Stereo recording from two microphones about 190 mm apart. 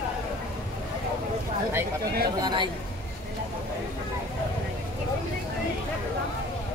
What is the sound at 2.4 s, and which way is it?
Speech, 25° right (ahead or behind).